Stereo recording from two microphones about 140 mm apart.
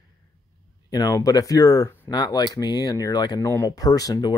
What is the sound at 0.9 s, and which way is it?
Speech, 25° left (ahead or behind).